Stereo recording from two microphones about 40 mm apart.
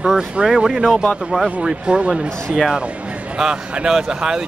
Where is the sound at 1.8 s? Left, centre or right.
Right.